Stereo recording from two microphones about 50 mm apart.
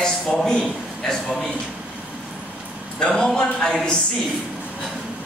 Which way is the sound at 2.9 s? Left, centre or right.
Centre.